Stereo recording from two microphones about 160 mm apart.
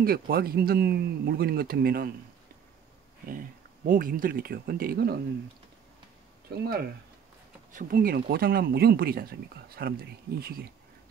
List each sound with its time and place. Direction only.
0.0 s speech: 70° right (ahead or behind)
3.3 s speech: 60° right (ahead or behind); by 5.2 s 75° right (ahead or behind)
7.7 s speech: 65° right (ahead or behind)